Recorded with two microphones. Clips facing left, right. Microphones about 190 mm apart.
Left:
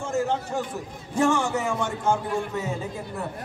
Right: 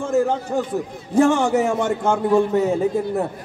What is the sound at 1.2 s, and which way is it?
A man's voice, 60° right (ahead or behind).